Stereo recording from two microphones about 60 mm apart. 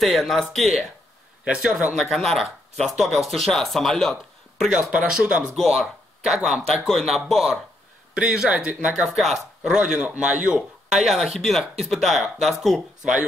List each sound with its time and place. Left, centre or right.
0.0 s speech: centre
1.4 s speech: centre
2.0 s speech: centre
4.6 s speech: centre
5.6 s speech: centre
8.1 s speech: centre
11.1 s speech: centre